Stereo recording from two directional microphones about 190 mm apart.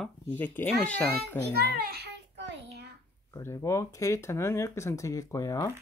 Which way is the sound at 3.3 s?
15° left (ahead or behind).